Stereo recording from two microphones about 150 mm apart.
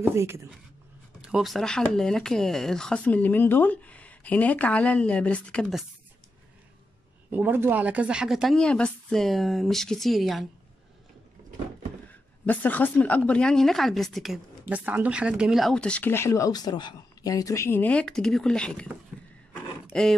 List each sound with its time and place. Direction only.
0.0 s speech: 15° right (ahead or behind)
1.2 s speech: centre (ahead or behind)
7.3 s a woman's voice: 15° right (ahead or behind)
12.4 s speech: 10° left (ahead or behind)
19.9 s speech: 5° left (ahead or behind)